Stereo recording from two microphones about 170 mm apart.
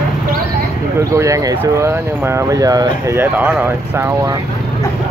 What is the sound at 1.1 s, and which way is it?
Speech, 20° right (ahead or behind).